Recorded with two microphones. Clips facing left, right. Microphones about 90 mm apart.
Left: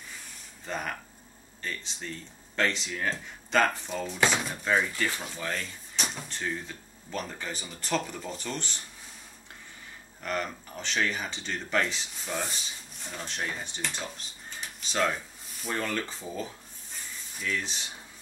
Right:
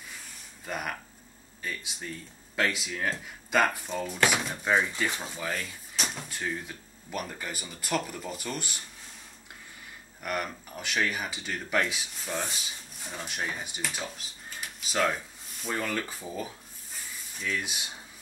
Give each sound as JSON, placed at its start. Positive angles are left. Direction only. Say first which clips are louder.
{"t": 0.7, "sound": "speech", "louder": "even", "side_deg": -10}
{"t": 5.4, "sound": "speech", "louder": "even", "side_deg": -5}
{"t": 10.2, "sound": "speech", "louder": "even", "side_deg": -10}